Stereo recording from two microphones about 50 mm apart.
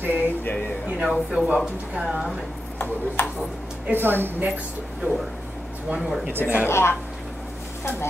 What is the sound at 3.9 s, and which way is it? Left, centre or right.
Speech, right.